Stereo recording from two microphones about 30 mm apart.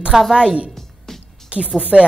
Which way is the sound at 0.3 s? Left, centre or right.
Centre.